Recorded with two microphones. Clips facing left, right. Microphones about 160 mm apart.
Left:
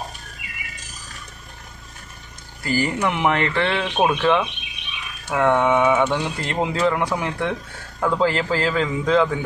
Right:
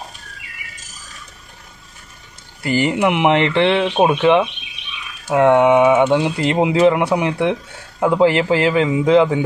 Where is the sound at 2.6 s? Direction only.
20° right (ahead or behind).